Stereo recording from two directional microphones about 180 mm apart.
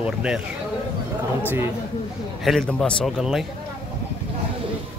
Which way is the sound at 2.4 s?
5° left (ahead or behind).